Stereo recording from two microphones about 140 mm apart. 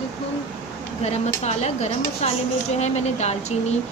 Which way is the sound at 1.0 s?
50° left (ahead or behind).